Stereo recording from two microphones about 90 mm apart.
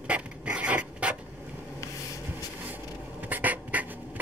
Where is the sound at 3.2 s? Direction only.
20° right (ahead or behind).